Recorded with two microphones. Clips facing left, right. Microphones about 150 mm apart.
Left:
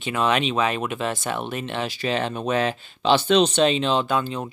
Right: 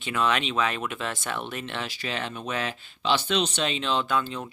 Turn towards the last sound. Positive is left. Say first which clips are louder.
# left 4 dB
turn(degrees=20)  # may be behind; listen again after turning